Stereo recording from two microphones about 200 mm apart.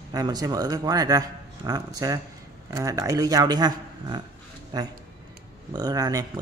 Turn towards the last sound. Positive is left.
turn(degrees=-20)  # may be behind; listen again after turning